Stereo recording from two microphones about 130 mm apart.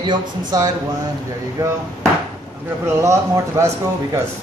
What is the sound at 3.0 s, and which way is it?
Speech, 25° right (ahead or behind).